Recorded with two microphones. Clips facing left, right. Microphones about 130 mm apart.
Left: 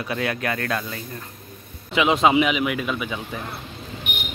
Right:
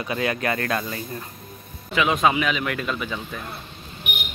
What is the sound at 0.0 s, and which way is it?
Speech, 5° right (ahead or behind).